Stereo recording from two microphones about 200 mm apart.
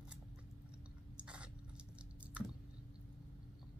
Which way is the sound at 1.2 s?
5° right (ahead or behind).